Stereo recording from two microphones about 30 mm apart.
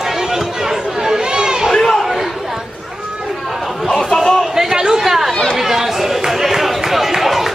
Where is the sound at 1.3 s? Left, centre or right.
Right.